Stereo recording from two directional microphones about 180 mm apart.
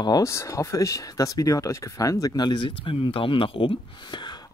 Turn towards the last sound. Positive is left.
turn(degrees=25)  # may be behind; listen again after turning